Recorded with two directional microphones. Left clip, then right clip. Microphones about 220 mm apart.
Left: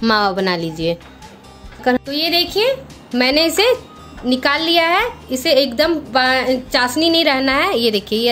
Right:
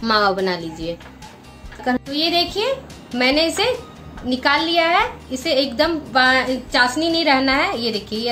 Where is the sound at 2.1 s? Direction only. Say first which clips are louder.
Left 2 dB; 45° left (ahead or behind).